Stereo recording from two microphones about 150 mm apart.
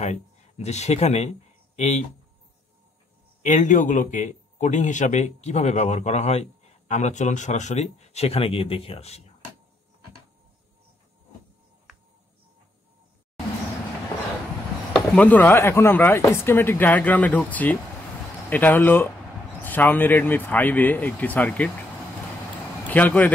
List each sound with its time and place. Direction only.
0.0 s speech: 45° left (ahead or behind)
3.4 s speech: 55° left (ahead or behind)
15.0 s speech: 10° left (ahead or behind)
22.8 s speech: 10° left (ahead or behind)